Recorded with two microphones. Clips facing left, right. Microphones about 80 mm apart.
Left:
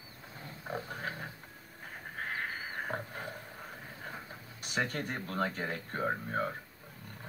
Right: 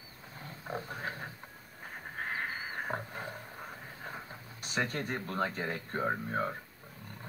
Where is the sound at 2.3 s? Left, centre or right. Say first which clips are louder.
Right 1 dB; centre.